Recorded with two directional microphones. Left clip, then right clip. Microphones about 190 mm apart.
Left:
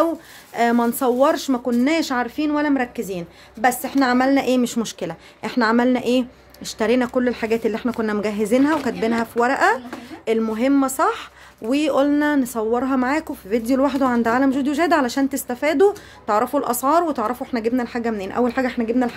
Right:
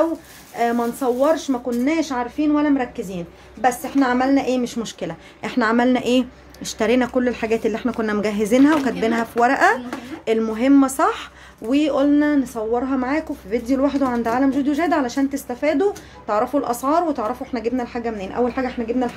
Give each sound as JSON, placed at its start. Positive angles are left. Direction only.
{"t": 0.6, "sound": "speech", "side_deg": 50}
{"t": 5.4, "sound": "speech", "side_deg": 20}
{"t": 11.6, "sound": "speech", "side_deg": 30}